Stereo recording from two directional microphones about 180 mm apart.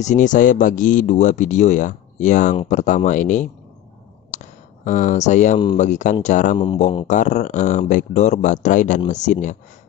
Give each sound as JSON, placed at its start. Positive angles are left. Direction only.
{"t": 0.0, "sound": "speech", "side_deg": 40}
{"t": 4.3, "sound": "a sound", "side_deg": 45}
{"t": 5.8, "sound": "speech", "side_deg": 40}